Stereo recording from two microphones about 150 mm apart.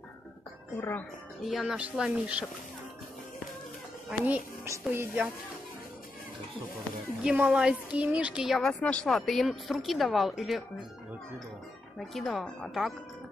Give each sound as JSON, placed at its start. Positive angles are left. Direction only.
{"t": 0.7, "sound": "speech", "side_deg": 15}
{"t": 1.4, "sound": "a woman's voice", "side_deg": 0}
{"t": 4.2, "sound": "a child's voice", "side_deg": -10}
{"t": 7.2, "sound": "a woman's voice", "side_deg": -5}
{"t": 12.0, "sound": "a woman's voice", "side_deg": 0}